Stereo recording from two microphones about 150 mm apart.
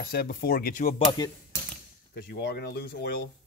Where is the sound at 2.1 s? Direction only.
90° left.